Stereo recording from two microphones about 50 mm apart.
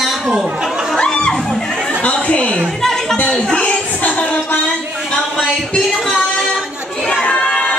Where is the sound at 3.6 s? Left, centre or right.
Left.